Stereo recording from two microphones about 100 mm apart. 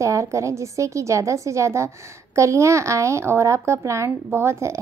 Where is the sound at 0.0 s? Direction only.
30° right (ahead or behind).